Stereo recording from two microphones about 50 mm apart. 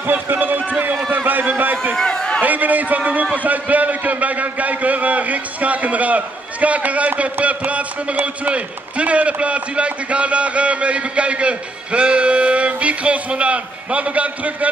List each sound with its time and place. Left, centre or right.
0.0 s run: right
1.1 s a sound: right
2.0 s a man's voice: centre
2.4 s a man's voice: right